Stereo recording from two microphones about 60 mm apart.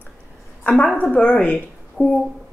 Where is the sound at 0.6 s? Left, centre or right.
Centre; by 2.1 s left.